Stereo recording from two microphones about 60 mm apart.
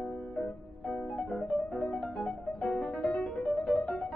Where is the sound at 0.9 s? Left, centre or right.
Centre.